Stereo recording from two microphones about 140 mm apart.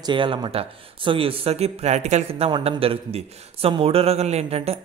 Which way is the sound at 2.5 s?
35° right (ahead or behind).